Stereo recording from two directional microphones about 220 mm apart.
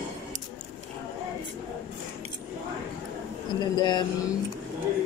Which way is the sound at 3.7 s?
20° left (ahead or behind).